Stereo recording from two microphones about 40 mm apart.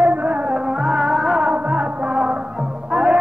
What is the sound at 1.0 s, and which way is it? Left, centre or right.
Music, centre.